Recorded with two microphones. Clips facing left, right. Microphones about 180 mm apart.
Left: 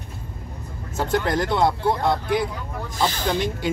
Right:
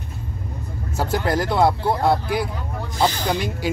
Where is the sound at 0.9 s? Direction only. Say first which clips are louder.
Even; 5° right (ahead or behind).